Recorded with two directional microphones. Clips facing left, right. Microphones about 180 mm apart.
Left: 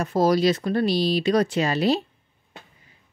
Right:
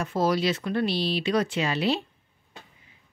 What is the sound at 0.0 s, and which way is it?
Speech, 40° left (ahead or behind).